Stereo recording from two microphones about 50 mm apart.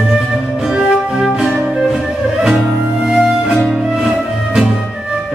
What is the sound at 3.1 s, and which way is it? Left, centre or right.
Music, centre.